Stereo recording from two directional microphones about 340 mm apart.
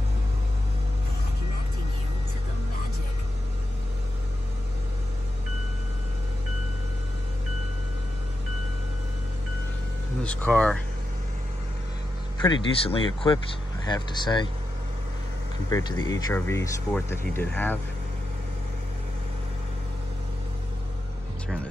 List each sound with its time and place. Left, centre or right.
10.2 s speech: centre
12.4 s speech: centre
15.7 s speech: centre